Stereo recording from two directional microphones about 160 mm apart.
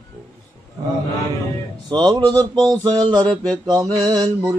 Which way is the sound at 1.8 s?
25° right (ahead or behind).